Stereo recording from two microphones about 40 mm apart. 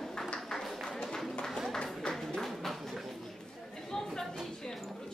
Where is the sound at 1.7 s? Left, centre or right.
Centre.